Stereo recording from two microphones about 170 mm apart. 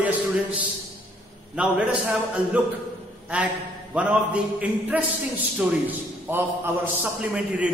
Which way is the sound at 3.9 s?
10° right (ahead or behind).